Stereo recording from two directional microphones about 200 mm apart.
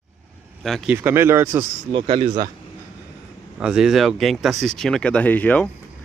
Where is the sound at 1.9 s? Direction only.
25° right (ahead or behind).